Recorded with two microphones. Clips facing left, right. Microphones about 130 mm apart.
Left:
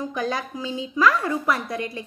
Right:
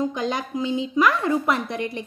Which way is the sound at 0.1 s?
20° right (ahead or behind).